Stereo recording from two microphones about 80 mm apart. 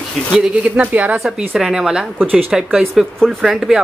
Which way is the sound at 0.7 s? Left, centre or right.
Centre.